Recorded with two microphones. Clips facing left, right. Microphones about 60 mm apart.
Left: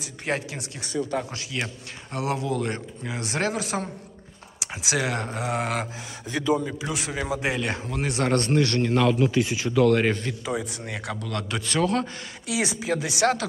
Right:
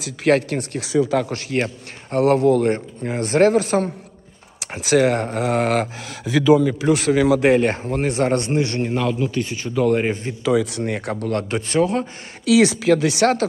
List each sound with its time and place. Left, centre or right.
0.0 s speech: right
0.8 s speech: right
1.3 s speech: right
6.0 s speech: right
6.7 s speech: right
7.5 s speech: right
8.4 s a man's voice: centre
8.9 s speech: centre
9.8 s speech: centre
10.4 s speech: right
10.8 s speech: right
12.4 s speech: right